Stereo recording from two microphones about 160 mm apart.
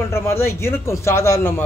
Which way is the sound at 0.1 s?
15° left (ahead or behind).